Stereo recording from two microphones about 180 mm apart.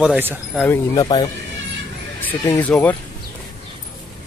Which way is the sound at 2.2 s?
10° left (ahead or behind).